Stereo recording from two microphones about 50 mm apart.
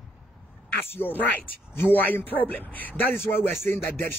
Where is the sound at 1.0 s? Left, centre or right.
Left.